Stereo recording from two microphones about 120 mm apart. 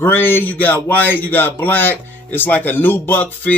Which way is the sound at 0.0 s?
20° left (ahead or behind).